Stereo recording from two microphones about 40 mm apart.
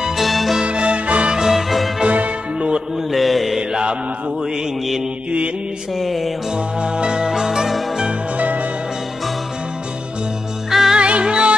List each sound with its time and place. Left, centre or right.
0.0 s music: centre
0.7 s music: right
1.3 s music: centre
2.0 s music: right
3.1 s mantra: centre
5.9 s music: centre
6.5 s music: right
8.4 s music: right
10.7 s music: centre
11.0 s music: right